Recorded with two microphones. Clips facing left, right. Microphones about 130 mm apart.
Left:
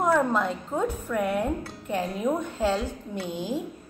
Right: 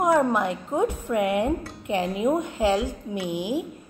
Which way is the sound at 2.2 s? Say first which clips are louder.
Right 3 dB; 15° right (ahead or behind).